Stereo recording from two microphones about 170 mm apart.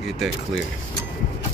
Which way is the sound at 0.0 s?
Centre (ahead or behind).